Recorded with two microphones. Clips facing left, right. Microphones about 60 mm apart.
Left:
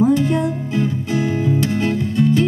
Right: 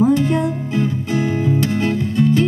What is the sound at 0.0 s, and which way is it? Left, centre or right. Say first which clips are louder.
Music: even; right.